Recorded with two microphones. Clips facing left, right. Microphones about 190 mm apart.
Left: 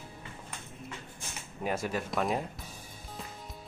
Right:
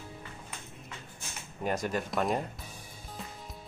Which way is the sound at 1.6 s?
5° left (ahead or behind).